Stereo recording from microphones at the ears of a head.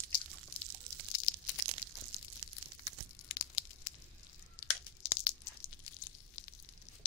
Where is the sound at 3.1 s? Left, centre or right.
Left.